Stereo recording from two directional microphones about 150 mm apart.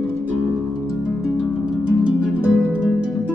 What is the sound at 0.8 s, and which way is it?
Harp, centre (ahead or behind).